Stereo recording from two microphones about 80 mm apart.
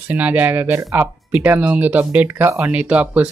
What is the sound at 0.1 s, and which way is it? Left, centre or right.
Speech, right.